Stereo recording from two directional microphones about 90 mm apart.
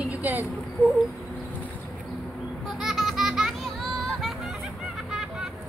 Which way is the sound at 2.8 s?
Centre (ahead or behind).